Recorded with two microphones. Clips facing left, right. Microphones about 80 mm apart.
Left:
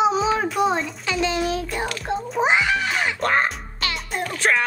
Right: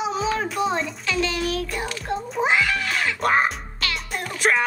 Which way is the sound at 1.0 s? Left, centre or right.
Left.